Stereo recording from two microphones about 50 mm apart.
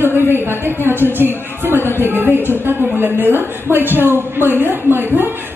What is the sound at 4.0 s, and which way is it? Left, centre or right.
A woman's voice, right.